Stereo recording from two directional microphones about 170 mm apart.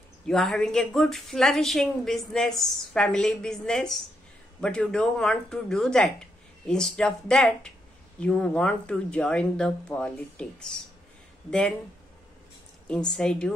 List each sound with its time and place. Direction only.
0.3 s a woman's voice: centre (ahead or behind)
12.8 s a woman's voice: 5° left (ahead or behind)